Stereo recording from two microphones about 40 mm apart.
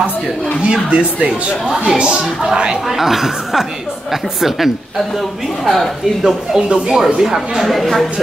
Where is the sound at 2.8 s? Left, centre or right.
Centre.